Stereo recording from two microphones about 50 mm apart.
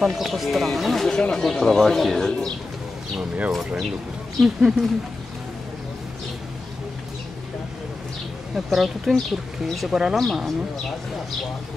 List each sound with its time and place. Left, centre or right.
0.0 s speech: centre
3.2 s speech: right
4.6 s speech: centre
8.6 s speech: centre
10.1 s speech: centre